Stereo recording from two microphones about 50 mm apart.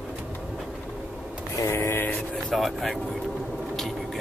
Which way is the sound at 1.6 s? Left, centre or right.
Left.